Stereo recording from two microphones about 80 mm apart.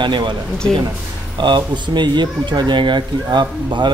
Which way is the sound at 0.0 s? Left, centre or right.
Right.